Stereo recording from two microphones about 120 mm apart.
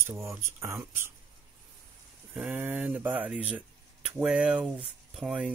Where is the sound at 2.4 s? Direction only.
15° right (ahead or behind).